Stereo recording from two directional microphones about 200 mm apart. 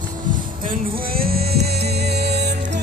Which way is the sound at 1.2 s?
50° right (ahead or behind).